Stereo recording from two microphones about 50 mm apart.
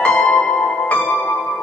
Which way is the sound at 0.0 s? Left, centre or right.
Left.